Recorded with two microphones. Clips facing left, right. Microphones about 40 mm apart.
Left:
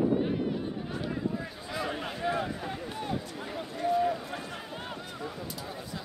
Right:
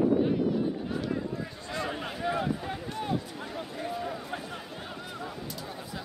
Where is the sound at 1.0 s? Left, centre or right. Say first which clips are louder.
Even; centre.